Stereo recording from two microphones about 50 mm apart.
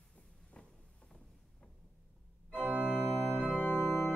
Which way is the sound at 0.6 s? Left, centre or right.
Centre.